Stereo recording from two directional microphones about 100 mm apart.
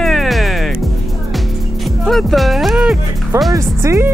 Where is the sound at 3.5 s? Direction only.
30° right (ahead or behind).